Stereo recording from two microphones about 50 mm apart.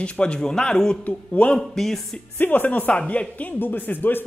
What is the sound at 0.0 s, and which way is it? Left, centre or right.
Speech, left.